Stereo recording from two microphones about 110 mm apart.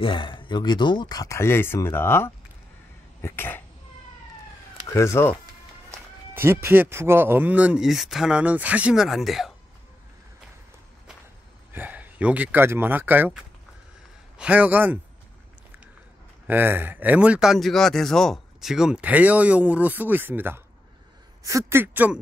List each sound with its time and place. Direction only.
0.0 s speech: 50° left (ahead or behind); by 3.6 s 20° left (ahead or behind)
4.9 s speech: 25° left (ahead or behind)
5.9 s speech: 20° right (ahead or behind)
7.8 s speech: centre (ahead or behind)
11.7 s speech: 15° right (ahead or behind)
14.4 s speech: 15° right (ahead or behind)
16.4 s a man's voice: 20° right (ahead or behind)